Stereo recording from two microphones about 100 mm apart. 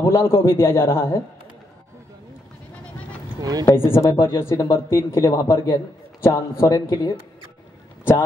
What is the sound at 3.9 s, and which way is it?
Speech, 25° left (ahead or behind).